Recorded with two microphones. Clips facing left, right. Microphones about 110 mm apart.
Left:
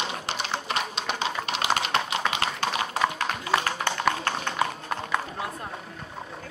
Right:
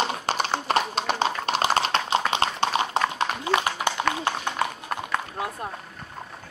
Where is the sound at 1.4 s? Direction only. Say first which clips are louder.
Right 4 dB; 35° right (ahead or behind).